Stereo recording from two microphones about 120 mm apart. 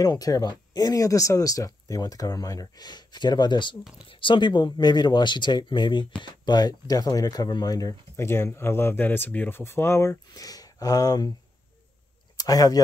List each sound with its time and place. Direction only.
0.0 s speech: 30° left (ahead or behind)
12.4 s speech: 30° left (ahead or behind)